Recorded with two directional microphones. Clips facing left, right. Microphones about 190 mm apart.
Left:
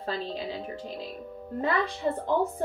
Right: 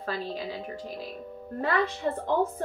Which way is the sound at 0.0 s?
25° left (ahead or behind).